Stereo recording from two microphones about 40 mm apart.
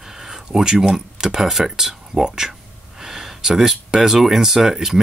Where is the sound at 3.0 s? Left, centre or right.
Centre.